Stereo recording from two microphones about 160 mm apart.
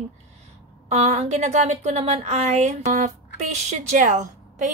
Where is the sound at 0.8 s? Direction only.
45° right (ahead or behind).